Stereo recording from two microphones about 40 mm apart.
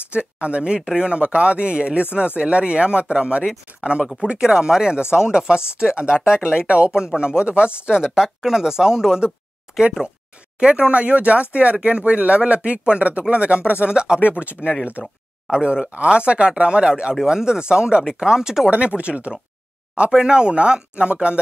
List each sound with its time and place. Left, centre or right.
0.1 s speech: right
8.1 s speech: centre
9.7 s a sound: centre
10.6 s speech: right
15.5 s speech: centre
18.7 s speech: right
20.1 s speech: right